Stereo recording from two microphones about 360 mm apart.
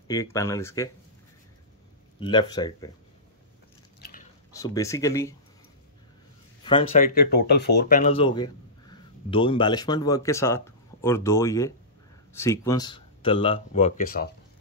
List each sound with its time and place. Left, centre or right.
0.1 s speech: centre
2.1 s speech: centre
4.0 s biting: left
4.6 s speech: centre
6.6 s speech: centre